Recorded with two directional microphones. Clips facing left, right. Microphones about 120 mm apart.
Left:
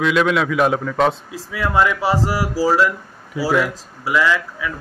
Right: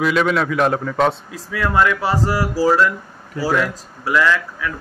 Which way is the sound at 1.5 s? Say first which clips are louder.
Right 1 dB; 10° left (ahead or behind).